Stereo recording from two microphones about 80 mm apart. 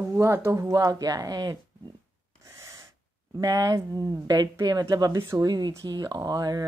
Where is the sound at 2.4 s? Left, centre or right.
Right.